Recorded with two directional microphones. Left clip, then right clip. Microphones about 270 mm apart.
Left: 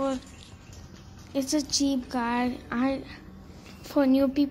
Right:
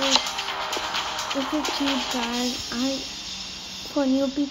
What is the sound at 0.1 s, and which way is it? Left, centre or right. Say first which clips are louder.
Music: right 14 dB; right.